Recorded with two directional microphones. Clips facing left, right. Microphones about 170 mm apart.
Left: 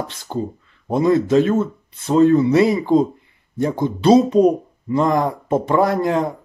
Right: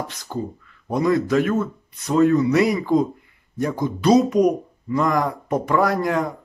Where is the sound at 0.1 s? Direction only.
25° left (ahead or behind).